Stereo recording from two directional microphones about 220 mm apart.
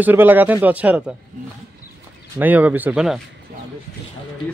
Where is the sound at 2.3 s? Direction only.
10° right (ahead or behind).